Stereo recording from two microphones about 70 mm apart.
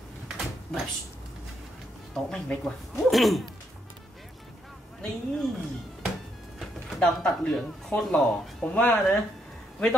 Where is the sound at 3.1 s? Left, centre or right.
Centre.